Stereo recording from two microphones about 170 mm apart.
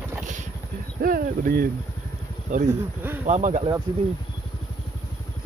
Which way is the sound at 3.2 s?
45° right (ahead or behind).